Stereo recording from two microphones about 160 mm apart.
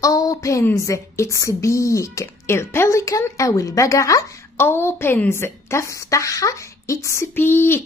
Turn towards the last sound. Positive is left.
turn(degrees=15)  # may be behind; listen again after turning